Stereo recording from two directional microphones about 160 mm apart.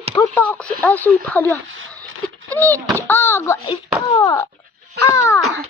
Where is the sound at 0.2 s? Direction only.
10° left (ahead or behind).